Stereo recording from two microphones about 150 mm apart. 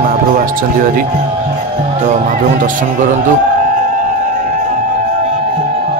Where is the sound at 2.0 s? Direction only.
55° right (ahead or behind).